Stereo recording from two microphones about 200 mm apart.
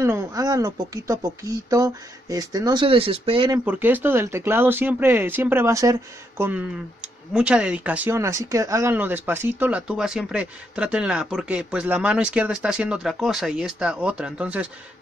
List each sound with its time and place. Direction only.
0.0 s speech: 15° right (ahead or behind)
3.5 s speech: 10° right (ahead or behind)